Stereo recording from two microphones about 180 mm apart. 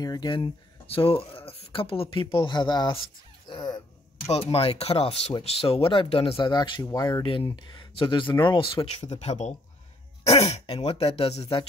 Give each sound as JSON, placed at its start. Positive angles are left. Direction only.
{"t": 0.0, "sound": "speech", "side_deg": 20}
{"t": 3.4, "sound": "music", "side_deg": 25}
{"t": 4.3, "sound": "speech", "side_deg": 35}